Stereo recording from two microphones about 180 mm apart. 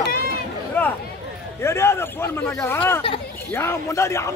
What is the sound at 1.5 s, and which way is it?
Speech, 15° left (ahead or behind).